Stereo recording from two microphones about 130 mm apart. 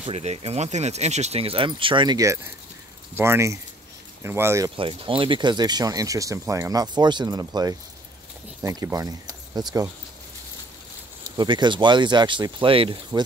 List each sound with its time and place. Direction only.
0.0 s speech: 55° right (ahead or behind); by 2.1 s 40° right (ahead or behind)
2.1 s speech: 25° right (ahead or behind)
4.7 s speech: 40° right (ahead or behind)
11.3 s speech: 35° right (ahead or behind)